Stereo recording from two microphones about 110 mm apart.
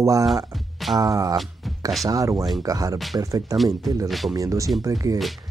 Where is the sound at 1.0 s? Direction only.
30° right (ahead or behind).